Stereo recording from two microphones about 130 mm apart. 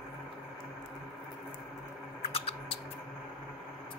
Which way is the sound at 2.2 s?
50° left (ahead or behind).